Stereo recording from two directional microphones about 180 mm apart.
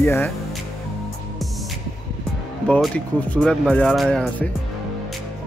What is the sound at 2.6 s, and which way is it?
Speech, 5° left (ahead or behind).